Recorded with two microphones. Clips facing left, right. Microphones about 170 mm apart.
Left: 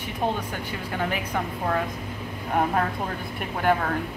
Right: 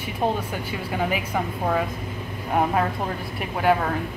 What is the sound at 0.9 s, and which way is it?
Speech, 5° right (ahead or behind).